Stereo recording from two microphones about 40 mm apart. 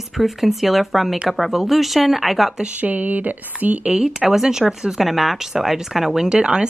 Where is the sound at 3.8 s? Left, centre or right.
Right.